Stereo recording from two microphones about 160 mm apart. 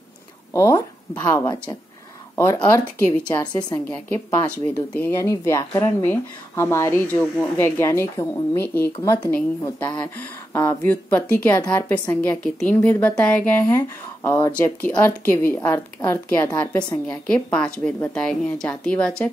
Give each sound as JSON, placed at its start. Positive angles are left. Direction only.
{"t": 0.5, "sound": "a woman's voice", "side_deg": 20}